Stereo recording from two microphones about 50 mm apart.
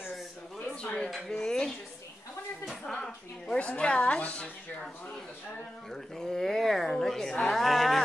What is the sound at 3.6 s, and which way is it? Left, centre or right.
Speech, left.